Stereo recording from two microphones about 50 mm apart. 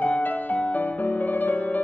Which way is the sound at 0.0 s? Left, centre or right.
Left.